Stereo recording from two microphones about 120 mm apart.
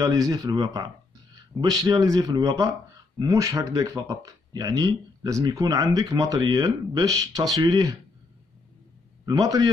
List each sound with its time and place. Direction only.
0.0 s speech: 30° right (ahead or behind)
9.2 s a man's voice: 35° right (ahead or behind)